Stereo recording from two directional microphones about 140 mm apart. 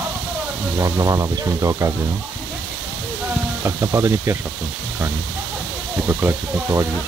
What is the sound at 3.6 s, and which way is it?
Speech, 20° right (ahead or behind).